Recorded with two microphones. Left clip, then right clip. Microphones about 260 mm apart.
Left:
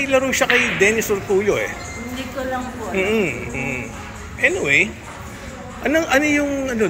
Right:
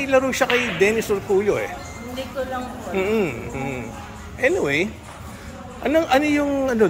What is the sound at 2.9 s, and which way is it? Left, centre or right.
A man's voice, centre.